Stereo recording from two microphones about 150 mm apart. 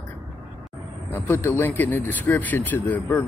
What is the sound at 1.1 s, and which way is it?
Speech, 15° left (ahead or behind).